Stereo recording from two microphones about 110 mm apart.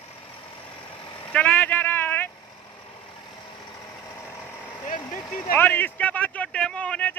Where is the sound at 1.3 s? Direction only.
15° left (ahead or behind).